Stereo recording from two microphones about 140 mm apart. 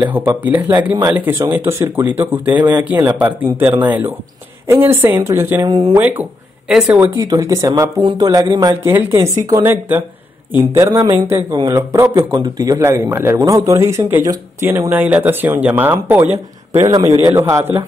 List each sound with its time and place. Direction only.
0.0 s speech: 15° right (ahead or behind); by 5.9 s 30° right (ahead or behind)
5.9 s speech: 10° right (ahead or behind)
7.2 s a man's voice: 25° right (ahead or behind)
11.0 s speech: 40° right (ahead or behind)
11.2 s a man's voice: 25° right (ahead or behind)
16.9 s a man's voice: 25° right (ahead or behind)